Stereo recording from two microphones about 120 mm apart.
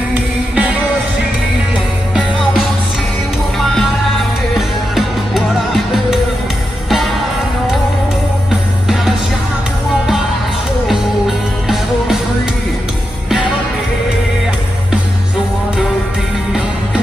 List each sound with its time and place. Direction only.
0.1 s music: 10° right (ahead or behind)
4.6 s music: centre (ahead or behind)
10.9 s music: centre (ahead or behind)